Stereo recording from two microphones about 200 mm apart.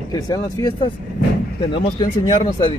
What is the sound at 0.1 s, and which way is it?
Speech, 20° left (ahead or behind).